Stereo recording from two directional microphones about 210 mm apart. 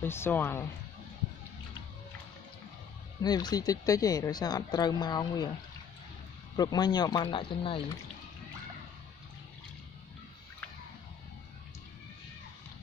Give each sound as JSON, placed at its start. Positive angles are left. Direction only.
{"t": 0.0, "sound": "speech", "side_deg": 10}
{"t": 3.2, "sound": "a woman's voice", "side_deg": 20}
{"t": 6.5, "sound": "a woman's voice", "side_deg": 20}